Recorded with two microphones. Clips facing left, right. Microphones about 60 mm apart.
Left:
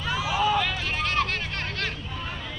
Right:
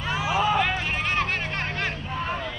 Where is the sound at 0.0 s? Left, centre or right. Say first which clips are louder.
Right 1 dB; right.